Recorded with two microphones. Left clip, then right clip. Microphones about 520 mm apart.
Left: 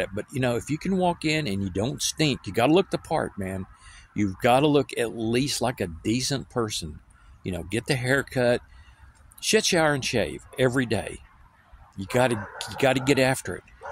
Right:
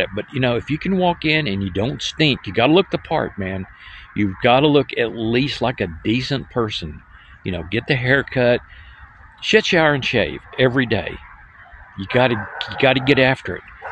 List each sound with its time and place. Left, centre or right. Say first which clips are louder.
0.0 s speech: right 7 dB; left